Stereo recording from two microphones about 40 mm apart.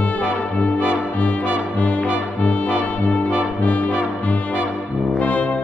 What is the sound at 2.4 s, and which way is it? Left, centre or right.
Brass instrument, left.